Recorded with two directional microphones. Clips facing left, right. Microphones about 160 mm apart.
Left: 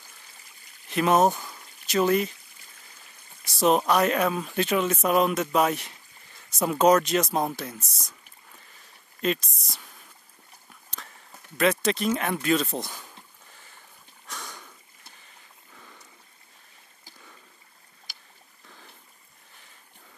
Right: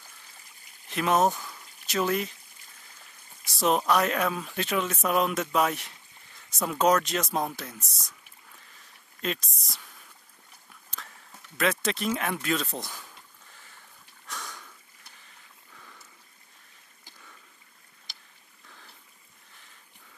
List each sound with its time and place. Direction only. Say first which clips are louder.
0.8 s speech: left 3 dB; centre (ahead or behind)
3.4 s speech: left 3 dB; centre (ahead or behind)
9.2 s speech: left 6 dB; centre (ahead or behind)
10.9 s speech: left 1 dB; centre (ahead or behind)
14.2 s sniff: even; centre (ahead or behind)
15.7 s a sound: left 2 dB; 15° left (ahead or behind)